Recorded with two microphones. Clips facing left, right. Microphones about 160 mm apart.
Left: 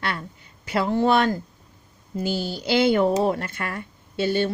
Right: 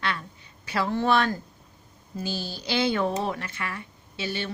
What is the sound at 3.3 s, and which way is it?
Speech, 50° left (ahead or behind).